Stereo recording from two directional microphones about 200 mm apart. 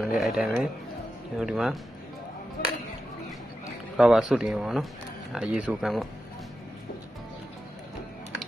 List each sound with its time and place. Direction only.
0.2 s speech: centre (ahead or behind)
2.6 s speech: 50° left (ahead or behind)
3.9 s speech: centre (ahead or behind)